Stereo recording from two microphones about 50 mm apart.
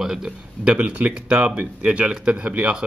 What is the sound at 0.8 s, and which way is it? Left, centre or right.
Speech, right.